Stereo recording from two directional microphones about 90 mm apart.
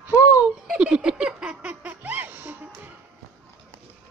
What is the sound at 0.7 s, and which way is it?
Music, 10° right (ahead or behind).